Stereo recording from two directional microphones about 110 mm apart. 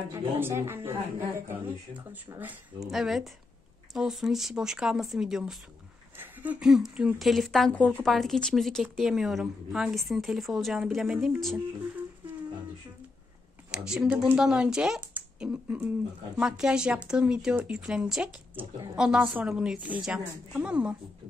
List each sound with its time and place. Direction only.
0.4 s a woman's voice: 20° right (ahead or behind)
2.9 s a woman's voice: 5° right (ahead or behind)
6.1 s a sound: 15° right (ahead or behind)
6.6 s a woman's voice: 5° right (ahead or behind)
13.7 s speech: 5° right (ahead or behind)